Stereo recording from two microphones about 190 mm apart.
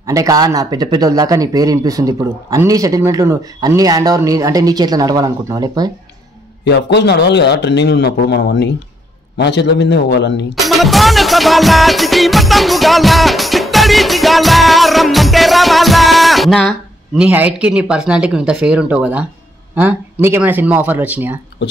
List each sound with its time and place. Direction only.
0.0 s a man's voice: 20° right (ahead or behind)
6.6 s a man's voice: 65° left (ahead or behind)
10.5 s music: centre (ahead or behind)
17.2 s speech: 10° right (ahead or behind)